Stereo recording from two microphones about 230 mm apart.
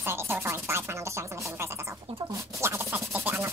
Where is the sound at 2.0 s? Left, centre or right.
Right.